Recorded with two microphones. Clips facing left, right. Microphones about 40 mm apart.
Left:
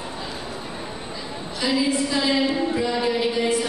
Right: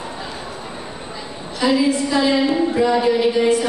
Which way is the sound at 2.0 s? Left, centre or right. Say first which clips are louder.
Right 5 dB; centre.